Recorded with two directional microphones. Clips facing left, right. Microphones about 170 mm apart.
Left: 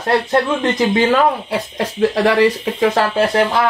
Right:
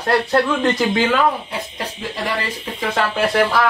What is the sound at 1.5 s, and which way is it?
Speech, 80° left.